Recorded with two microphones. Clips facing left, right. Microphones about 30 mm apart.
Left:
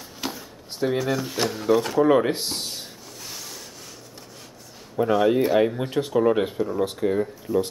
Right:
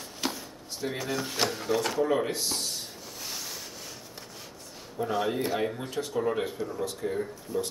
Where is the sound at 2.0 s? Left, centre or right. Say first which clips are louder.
Left 8 dB; left.